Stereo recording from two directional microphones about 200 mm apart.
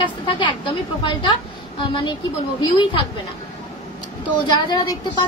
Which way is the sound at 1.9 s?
25° left (ahead or behind).